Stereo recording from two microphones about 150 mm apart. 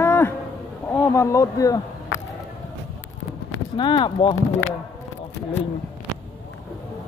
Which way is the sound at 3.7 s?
30° left (ahead or behind).